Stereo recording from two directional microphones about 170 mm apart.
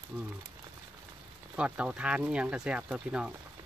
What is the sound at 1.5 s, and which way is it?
Speech, 5° right (ahead or behind).